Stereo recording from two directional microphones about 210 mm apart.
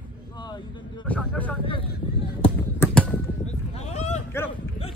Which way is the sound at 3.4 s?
30° left (ahead or behind).